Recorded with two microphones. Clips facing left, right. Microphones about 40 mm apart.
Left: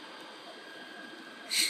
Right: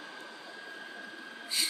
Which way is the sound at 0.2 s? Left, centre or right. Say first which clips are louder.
Right 1 dB; left.